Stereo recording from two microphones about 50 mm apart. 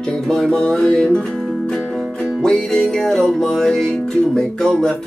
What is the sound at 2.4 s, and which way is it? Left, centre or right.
Music, centre.